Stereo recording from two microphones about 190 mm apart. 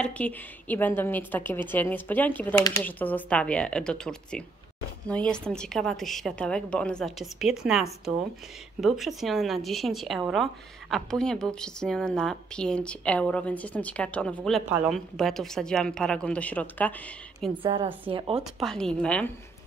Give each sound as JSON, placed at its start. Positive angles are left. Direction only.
{"t": 0.0, "sound": "a woman's voice", "side_deg": 10}
{"t": 17.6, "sound": "speech", "side_deg": -30}
{"t": 18.6, "sound": "speech", "side_deg": 5}